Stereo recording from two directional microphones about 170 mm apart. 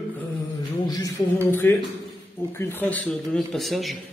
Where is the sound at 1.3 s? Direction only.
15° left (ahead or behind).